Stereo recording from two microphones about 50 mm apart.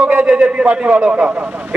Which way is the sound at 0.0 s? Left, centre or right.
Right.